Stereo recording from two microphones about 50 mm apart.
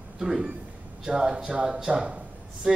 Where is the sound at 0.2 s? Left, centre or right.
Centre.